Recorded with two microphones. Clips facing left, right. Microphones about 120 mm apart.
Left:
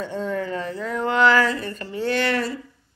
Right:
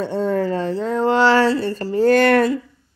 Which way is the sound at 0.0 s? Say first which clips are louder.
Right 7 dB; 35° right (ahead or behind).